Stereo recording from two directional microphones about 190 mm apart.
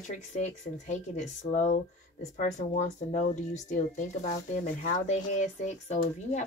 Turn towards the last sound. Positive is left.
turn(degrees=35)  # may be behind; listen again after turning